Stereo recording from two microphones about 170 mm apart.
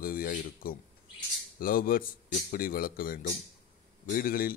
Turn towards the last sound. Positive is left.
turn(degrees=60)  # may be behind; listen again after turning